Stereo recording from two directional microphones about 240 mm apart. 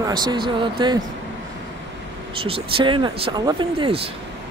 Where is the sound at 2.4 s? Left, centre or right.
Right.